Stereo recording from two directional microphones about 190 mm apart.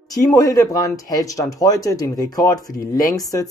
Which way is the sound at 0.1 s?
20° left (ahead or behind).